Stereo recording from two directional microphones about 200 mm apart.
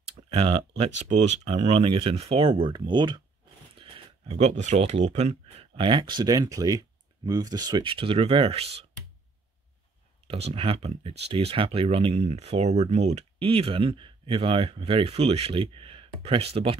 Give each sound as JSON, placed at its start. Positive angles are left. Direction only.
{"t": 0.3, "sound": "speech", "side_deg": -30}
{"t": 10.5, "sound": "speech", "side_deg": -30}